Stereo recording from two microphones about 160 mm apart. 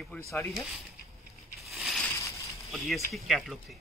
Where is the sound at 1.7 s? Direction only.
Centre (ahead or behind).